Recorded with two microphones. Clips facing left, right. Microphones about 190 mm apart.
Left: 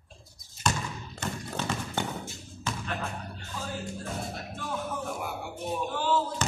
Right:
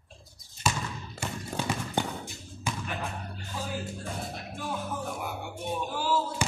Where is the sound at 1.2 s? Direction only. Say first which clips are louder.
Left 1 dB; 10° right (ahead or behind).